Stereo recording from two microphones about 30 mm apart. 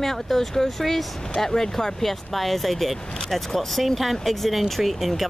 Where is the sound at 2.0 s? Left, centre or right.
Centre.